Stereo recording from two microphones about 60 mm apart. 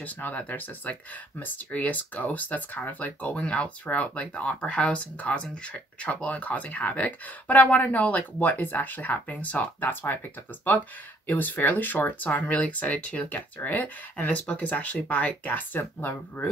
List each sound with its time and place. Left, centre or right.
0.0 s speech: left
13.6 s speech: left
14.1 s speech: left